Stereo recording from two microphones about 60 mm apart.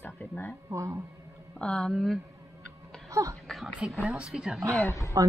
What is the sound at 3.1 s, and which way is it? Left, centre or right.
Speech, right.